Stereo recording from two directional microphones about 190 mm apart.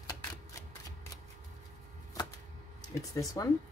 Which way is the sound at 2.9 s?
15° left (ahead or behind).